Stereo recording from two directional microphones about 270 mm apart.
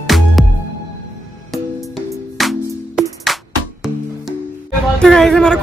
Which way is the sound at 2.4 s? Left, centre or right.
Centre.